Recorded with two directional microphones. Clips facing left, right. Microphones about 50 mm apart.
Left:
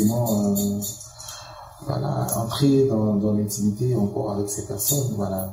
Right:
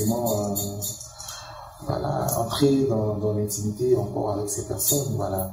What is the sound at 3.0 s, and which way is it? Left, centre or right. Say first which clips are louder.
Mantra: left 3 dB; left.